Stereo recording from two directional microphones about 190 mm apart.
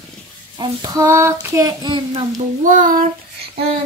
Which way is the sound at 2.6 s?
45° right (ahead or behind).